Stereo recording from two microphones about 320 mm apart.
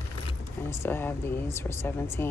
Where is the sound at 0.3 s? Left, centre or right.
Centre.